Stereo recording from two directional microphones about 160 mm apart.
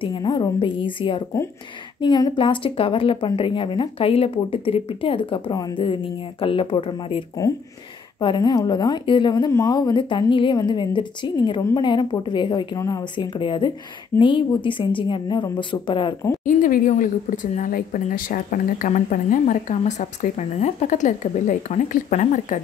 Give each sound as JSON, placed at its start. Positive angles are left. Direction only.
{"t": 0.0, "sound": "a woman's voice", "side_deg": 30}
{"t": 16.4, "sound": "a woman's voice", "side_deg": 55}